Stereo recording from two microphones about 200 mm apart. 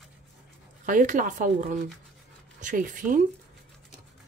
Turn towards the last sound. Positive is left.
turn(degrees=-40)  # may be behind; listen again after turning